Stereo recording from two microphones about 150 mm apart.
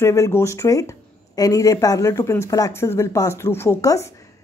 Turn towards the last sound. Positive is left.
turn(degrees=20)  # may be behind; listen again after turning